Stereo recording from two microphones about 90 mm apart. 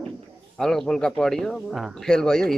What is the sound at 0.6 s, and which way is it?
Speech, 5° left (ahead or behind).